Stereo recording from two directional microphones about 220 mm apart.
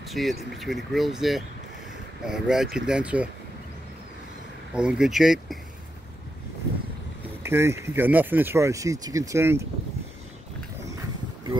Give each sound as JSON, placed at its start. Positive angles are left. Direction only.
{"t": 0.1, "sound": "speech", "side_deg": 0}
{"t": 4.7, "sound": "speech", "side_deg": -5}
{"t": 7.4, "sound": "speech", "side_deg": -10}